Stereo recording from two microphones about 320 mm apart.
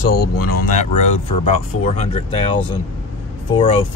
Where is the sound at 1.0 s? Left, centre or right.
Centre.